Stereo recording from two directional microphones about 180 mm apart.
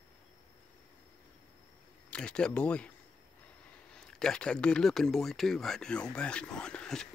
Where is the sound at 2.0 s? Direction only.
5° left (ahead or behind).